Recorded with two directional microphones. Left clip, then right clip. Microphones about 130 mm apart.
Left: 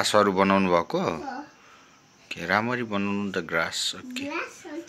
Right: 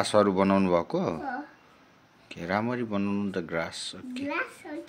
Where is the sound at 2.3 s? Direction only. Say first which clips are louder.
Left 5 dB; 5° right (ahead or behind).